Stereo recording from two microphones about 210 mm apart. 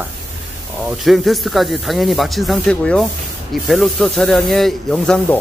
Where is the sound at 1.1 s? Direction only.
Centre (ahead or behind).